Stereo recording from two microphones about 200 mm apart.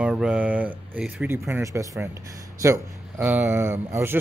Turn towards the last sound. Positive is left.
turn(degrees=-15)  # may be behind; listen again after turning